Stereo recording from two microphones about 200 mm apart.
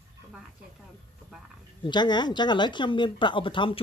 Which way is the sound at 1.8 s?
20° left (ahead or behind).